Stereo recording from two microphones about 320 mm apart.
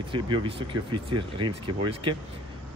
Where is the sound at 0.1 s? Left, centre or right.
Centre.